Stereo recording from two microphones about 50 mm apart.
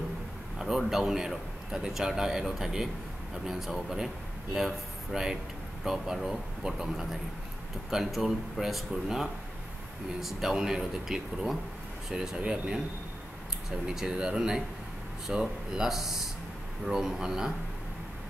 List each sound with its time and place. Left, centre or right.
0.6 s a man's voice: centre
13.7 s a man's voice: centre